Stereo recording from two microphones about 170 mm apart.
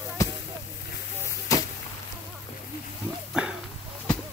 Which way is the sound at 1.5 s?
20° left (ahead or behind).